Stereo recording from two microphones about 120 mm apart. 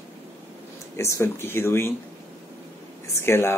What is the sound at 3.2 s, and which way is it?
Speech, 20° left (ahead or behind).